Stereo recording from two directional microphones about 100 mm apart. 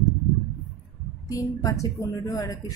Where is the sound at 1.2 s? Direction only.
35° left (ahead or behind).